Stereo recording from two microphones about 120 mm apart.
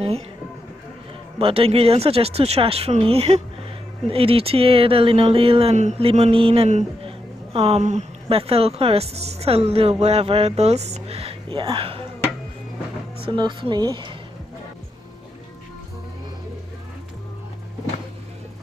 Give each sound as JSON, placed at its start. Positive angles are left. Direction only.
{"t": 1.4, "sound": "a woman's voice", "side_deg": -55}
{"t": 13.2, "sound": "a woman's voice", "side_deg": -45}